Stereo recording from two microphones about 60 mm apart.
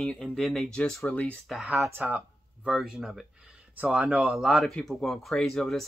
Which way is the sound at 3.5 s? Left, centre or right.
Centre.